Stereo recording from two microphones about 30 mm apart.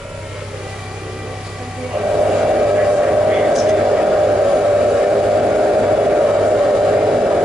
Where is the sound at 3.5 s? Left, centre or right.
Centre.